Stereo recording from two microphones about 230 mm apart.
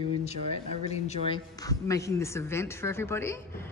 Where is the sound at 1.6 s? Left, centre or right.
Centre.